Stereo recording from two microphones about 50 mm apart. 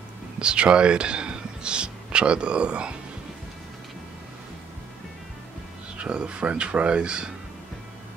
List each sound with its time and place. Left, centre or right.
0.4 s speech: centre
5.9 s speech: centre